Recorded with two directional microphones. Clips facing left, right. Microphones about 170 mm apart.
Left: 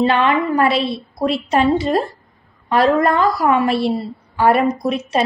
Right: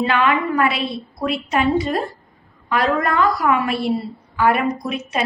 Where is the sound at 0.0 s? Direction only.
30° left (ahead or behind).